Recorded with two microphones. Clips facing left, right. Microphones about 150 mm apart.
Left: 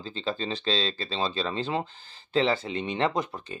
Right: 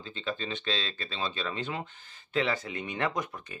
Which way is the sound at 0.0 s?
30° left (ahead or behind).